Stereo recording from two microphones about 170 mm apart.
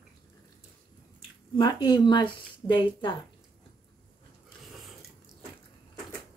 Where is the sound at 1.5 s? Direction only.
25° left (ahead or behind).